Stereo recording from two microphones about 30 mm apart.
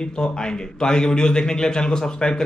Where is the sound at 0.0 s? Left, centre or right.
Left.